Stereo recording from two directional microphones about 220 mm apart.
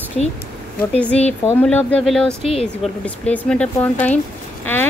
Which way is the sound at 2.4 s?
25° left (ahead or behind).